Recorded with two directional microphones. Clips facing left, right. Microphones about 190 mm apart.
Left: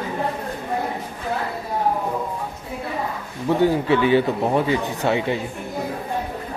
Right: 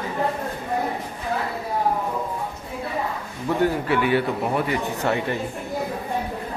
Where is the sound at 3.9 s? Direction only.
25° left (ahead or behind).